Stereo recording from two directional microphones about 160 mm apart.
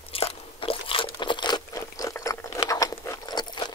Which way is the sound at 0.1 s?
35° left (ahead or behind).